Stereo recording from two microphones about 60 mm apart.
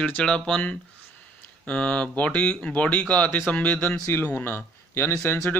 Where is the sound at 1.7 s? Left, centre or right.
Centre.